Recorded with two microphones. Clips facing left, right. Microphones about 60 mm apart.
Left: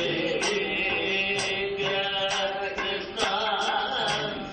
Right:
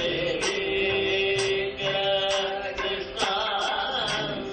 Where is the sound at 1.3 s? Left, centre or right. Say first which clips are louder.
Right 3 dB; left.